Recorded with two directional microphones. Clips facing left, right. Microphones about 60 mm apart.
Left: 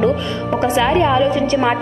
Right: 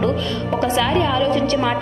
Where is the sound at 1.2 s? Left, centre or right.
Centre.